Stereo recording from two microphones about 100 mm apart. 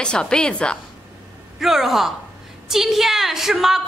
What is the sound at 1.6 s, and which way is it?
A woman's voice, centre (ahead or behind).